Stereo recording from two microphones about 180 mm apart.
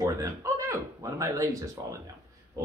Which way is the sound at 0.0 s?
15° right (ahead or behind).